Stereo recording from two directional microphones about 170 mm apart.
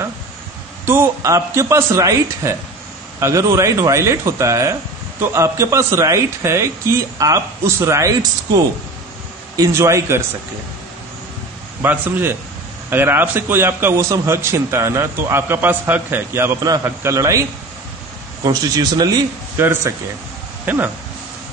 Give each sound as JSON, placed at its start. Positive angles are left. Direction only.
{"t": 0.8, "sound": "a man's voice", "side_deg": -15}
{"t": 11.8, "sound": "a man's voice", "side_deg": -10}